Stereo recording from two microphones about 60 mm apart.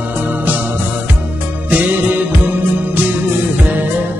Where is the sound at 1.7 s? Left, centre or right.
Right.